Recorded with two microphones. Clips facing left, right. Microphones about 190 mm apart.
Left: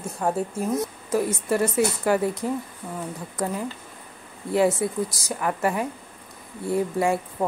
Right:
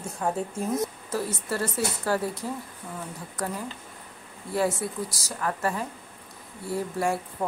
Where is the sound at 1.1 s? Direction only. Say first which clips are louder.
Left 8 dB; 15° left (ahead or behind).